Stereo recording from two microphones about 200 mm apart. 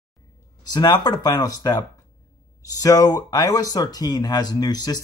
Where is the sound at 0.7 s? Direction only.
20° left (ahead or behind).